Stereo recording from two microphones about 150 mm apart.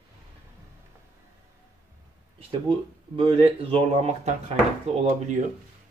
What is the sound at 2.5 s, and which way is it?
Speech, 35° right (ahead or behind).